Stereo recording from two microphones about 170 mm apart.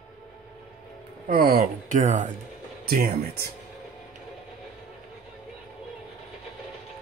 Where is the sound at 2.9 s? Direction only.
60° right (ahead or behind).